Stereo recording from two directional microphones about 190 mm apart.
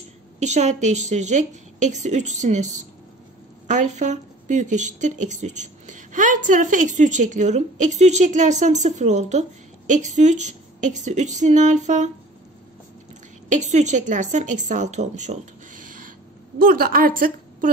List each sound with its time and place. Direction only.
0.4 s a woman's voice: 35° right (ahead or behind)
13.5 s a woman's voice: 40° right (ahead or behind)